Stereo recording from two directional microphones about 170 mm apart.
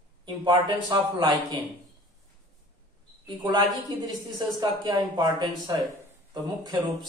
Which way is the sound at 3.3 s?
25° right (ahead or behind).